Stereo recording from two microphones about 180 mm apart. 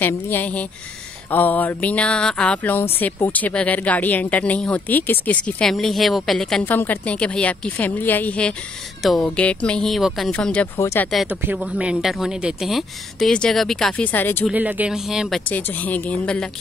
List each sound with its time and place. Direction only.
0.0 s a woman's voice: 10° left (ahead or behind)
11.1 s a woman's voice: centre (ahead or behind)
14.5 s a woman's voice: 10° right (ahead or behind)